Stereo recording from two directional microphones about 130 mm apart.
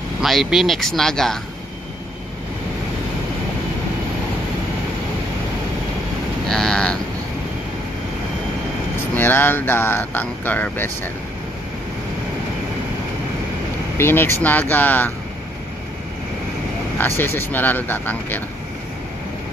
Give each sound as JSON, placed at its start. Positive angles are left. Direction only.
{"t": 0.2, "sound": "speech", "side_deg": 0}
{"t": 6.5, "sound": "cattle", "side_deg": 5}
{"t": 9.1, "sound": "speech", "side_deg": 15}
{"t": 13.9, "sound": "speech", "side_deg": 20}
{"t": 17.0, "sound": "speech", "side_deg": 15}